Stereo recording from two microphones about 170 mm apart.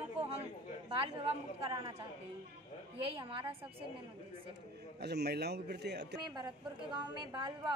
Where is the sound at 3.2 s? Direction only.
30° right (ahead or behind).